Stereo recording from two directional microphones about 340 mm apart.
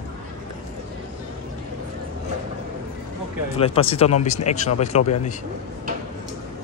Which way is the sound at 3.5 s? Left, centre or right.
Centre.